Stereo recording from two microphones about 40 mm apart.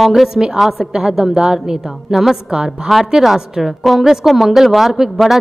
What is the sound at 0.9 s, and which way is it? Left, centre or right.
A woman's voice, centre.